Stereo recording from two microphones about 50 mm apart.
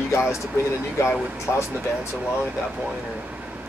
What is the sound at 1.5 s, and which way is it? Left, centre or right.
Speech, left.